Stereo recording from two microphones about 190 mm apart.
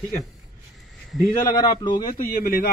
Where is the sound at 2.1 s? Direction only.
50° left (ahead or behind).